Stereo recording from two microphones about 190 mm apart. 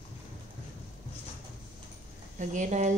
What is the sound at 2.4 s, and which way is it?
Speech, 40° right (ahead or behind).